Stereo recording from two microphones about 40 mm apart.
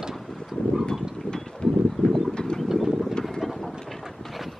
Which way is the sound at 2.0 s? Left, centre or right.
Left.